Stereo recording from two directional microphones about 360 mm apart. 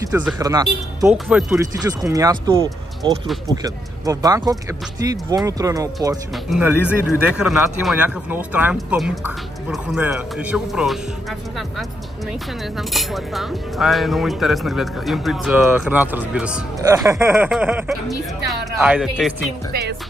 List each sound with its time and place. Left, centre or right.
0.0 s speech: centre
12.7 s speech: centre
19.7 s speech: right